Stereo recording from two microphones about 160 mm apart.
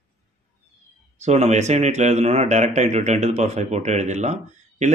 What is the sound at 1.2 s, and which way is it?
A man's voice, 45° right (ahead or behind).